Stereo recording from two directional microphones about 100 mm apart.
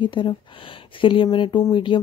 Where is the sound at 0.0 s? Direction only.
55° left (ahead or behind).